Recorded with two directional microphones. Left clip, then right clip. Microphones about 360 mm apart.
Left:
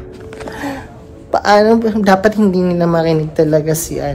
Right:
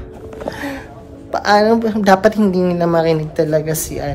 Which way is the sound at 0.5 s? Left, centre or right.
Centre.